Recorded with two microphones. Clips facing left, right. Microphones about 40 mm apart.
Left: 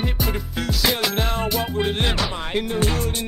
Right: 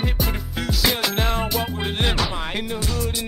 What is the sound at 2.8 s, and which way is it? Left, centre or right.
Music, left.